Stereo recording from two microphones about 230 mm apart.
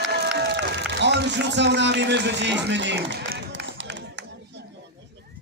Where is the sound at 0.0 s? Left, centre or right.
Right.